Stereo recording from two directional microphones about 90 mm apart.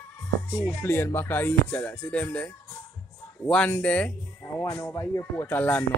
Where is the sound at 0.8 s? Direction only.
25° left (ahead or behind).